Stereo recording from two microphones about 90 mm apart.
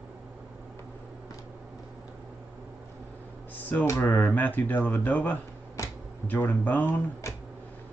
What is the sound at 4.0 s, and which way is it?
Speech, 25° left (ahead or behind).